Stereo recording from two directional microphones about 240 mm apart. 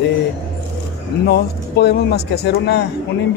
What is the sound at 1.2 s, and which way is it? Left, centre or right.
Speech, left.